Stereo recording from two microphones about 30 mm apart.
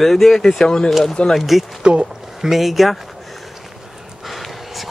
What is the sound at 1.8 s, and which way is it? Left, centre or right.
Speech, right.